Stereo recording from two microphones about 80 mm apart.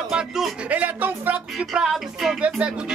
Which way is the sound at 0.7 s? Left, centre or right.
Right.